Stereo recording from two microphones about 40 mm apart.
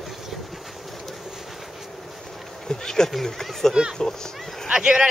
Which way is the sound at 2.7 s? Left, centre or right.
Centre.